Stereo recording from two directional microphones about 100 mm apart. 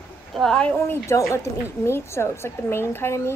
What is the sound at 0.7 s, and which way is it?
A woman's voice, 25° left (ahead or behind).